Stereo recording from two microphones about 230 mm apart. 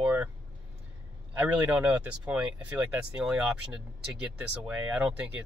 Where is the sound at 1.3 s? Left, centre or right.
Centre.